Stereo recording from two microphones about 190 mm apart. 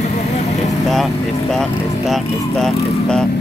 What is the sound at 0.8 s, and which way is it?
Speech, centre (ahead or behind).